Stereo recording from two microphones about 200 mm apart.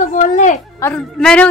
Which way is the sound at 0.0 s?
40° left (ahead or behind).